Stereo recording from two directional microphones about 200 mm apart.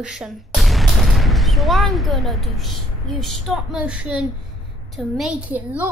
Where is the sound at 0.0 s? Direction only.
5° right (ahead or behind).